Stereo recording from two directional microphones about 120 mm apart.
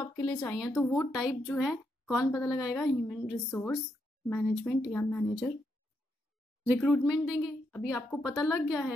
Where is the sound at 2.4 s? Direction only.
5° right (ahead or behind).